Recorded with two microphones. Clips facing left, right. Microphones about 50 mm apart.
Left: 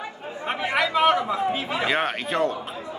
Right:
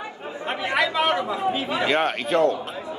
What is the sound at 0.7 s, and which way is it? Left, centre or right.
Chatter, centre.